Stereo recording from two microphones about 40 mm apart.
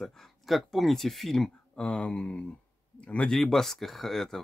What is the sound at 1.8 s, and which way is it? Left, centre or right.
Speech, left.